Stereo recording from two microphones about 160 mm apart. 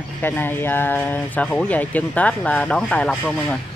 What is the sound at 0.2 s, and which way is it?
Speech, 10° left (ahead or behind).